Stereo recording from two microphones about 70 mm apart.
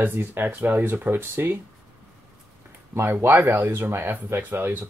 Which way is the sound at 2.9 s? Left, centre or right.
Right.